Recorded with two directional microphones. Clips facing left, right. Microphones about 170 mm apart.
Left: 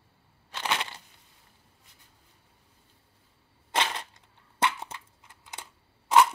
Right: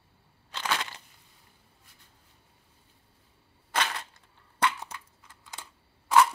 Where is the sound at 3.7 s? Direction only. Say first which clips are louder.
Left 1 dB; 25° left (ahead or behind).